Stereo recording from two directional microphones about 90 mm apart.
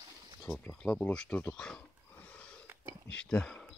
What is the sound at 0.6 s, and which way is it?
Speech, 10° left (ahead or behind).